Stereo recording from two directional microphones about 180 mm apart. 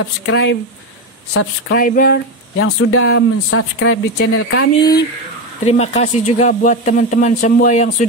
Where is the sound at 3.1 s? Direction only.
80° left.